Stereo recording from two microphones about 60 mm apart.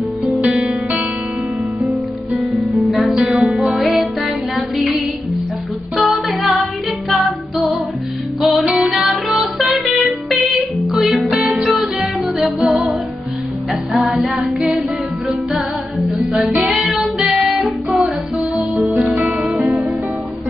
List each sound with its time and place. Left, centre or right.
0.4 s music: centre
2.3 s music: centre
16.5 s music: centre
19.5 s music: right